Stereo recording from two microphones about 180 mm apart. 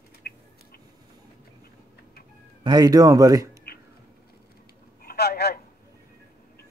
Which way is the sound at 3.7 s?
60° left (ahead or behind).